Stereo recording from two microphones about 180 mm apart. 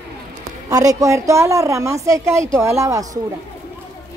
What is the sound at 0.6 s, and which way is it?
A woman's voice, 20° right (ahead or behind).